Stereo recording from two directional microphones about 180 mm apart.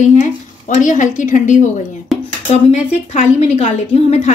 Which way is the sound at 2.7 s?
40° left (ahead or behind).